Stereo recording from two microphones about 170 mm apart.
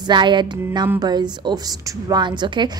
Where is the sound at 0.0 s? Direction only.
25° right (ahead or behind).